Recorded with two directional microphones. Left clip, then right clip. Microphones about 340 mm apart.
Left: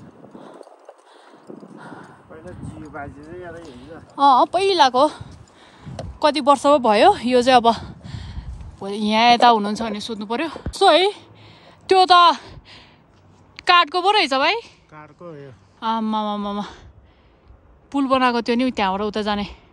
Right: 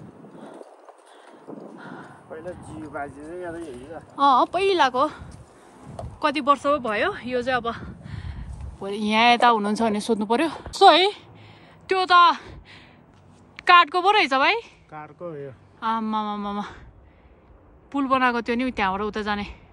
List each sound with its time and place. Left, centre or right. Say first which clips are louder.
1.8 s a sound: left 1 dB; centre
2.7 s speech: even; right
4.1 s a woman's voice: left 4 dB; centre
17.9 s speech: left 3 dB; centre